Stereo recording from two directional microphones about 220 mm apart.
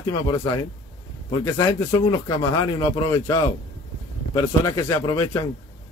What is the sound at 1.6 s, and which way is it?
Speech, 15° left (ahead or behind).